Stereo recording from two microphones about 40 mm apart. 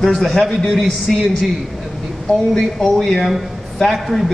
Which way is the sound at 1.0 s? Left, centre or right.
Centre.